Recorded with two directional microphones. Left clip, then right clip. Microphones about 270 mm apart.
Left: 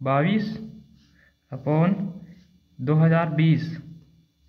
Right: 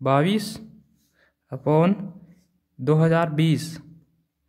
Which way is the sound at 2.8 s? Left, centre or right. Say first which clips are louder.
Right 3 dB; right.